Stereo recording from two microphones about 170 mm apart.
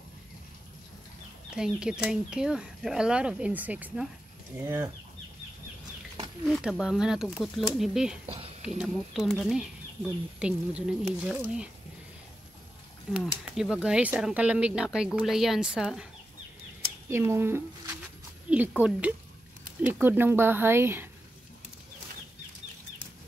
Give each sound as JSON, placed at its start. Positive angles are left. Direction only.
{"t": 1.5, "sound": "a woman's voice", "side_deg": -5}
{"t": 6.4, "sound": "speech", "side_deg": 0}
{"t": 8.3, "sound": "a sound", "side_deg": -35}
{"t": 8.6, "sound": "a woman's voice", "side_deg": 0}
{"t": 13.1, "sound": "speech", "side_deg": -5}
{"t": 17.1, "sound": "a woman's voice", "side_deg": -15}